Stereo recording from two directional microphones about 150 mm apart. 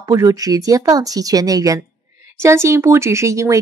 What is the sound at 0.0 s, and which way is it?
Speech, 25° right (ahead or behind).